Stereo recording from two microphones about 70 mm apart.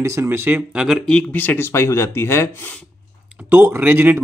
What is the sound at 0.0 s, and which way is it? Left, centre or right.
Speech, right.